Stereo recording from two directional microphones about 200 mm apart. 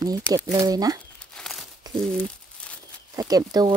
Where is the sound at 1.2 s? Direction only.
5° left (ahead or behind).